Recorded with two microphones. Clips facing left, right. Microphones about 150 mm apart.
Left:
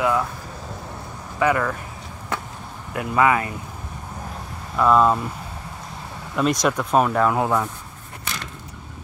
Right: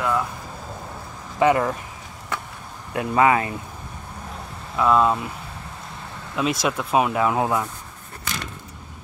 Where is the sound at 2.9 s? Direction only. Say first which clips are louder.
Right 1 dB; 30° right (ahead or behind).